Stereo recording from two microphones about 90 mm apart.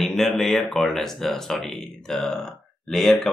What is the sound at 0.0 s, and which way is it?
Speech, 5° left (ahead or behind).